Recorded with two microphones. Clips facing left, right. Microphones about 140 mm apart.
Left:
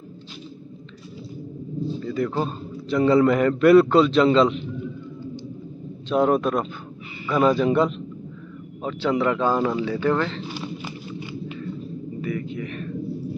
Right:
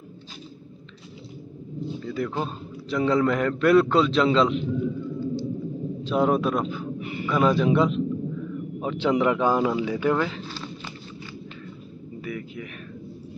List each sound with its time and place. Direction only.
2.0 s a man's voice: centre (ahead or behind)
5.2 s a sound: 15° left (ahead or behind)
6.0 s a man's voice: centre (ahead or behind)
8.8 s speech: 20° right (ahead or behind)
10.4 s speech: 15° left (ahead or behind)
12.2 s a sound: 5° right (ahead or behind)